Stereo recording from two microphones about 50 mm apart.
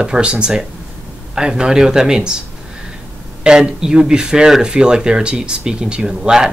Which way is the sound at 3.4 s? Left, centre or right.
Centre.